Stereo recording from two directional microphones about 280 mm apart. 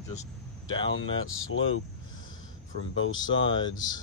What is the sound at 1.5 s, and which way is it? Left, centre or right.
Speech, left.